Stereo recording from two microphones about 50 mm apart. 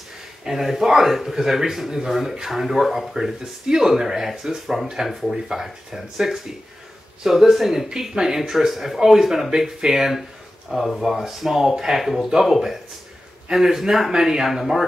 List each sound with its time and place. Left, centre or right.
0.4 s a man's voice: centre